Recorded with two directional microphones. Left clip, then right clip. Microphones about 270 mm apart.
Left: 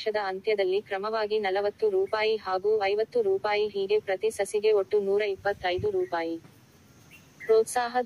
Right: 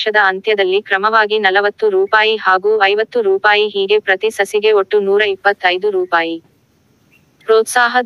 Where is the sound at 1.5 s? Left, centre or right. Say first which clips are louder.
Right 13 dB; right.